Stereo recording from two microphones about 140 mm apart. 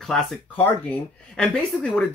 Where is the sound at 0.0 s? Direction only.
5° left (ahead or behind).